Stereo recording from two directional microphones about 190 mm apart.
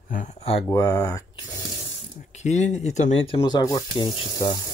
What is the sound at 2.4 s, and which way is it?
Speech, 35° left (ahead or behind).